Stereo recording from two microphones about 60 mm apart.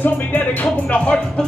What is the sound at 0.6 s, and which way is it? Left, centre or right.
Speech, centre.